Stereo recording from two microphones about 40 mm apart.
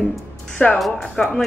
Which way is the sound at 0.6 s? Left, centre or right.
Left.